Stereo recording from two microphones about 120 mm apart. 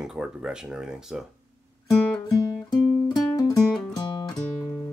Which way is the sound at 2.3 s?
30° left (ahead or behind).